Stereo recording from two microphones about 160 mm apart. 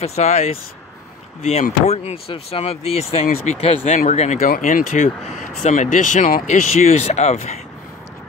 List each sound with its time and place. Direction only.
0.0 s speech: 45° left (ahead or behind)